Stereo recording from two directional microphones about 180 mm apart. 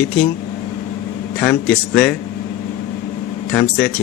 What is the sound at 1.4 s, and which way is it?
Speech, 5° left (ahead or behind).